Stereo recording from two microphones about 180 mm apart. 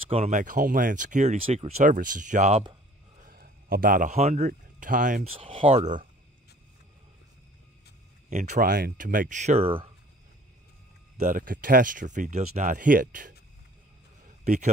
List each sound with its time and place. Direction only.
0.1 s speech: 40° right (ahead or behind)
1.8 s speech: 50° right (ahead or behind)
3.2 s speech: 55° right (ahead or behind)
5.2 s speech: 30° right (ahead or behind)
8.3 s speech: 40° right (ahead or behind)
11.1 s speech: 50° right (ahead or behind)
14.4 s speech: 40° right (ahead or behind)